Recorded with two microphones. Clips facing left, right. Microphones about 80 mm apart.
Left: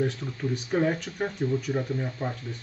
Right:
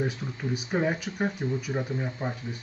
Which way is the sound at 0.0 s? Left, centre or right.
Centre.